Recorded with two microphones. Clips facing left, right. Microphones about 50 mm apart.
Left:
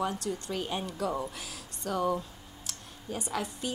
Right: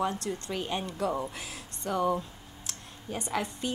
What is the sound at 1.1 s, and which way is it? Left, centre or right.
A woman's voice, centre.